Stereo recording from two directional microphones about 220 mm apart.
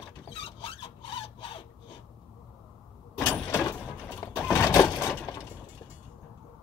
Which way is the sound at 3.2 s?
10° left (ahead or behind).